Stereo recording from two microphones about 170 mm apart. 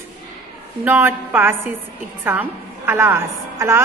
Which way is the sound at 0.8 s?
10° right (ahead or behind).